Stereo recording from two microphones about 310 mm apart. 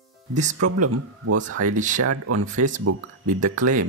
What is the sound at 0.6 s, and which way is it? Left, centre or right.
Speech, right.